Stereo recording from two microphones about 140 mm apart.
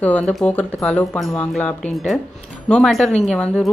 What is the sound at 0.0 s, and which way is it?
Speech, 10° left (ahead or behind).